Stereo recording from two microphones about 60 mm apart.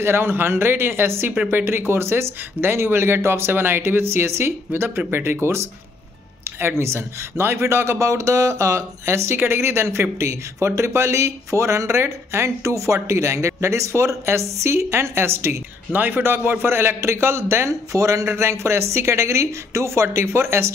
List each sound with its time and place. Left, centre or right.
0.0 s speech: right
15.9 s speech: right
16.2 s speech: right
17.9 s speech: right
18.2 s speech: right